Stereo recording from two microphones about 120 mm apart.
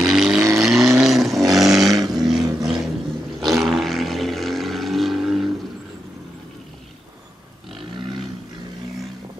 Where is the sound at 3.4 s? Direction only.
Centre (ahead or behind).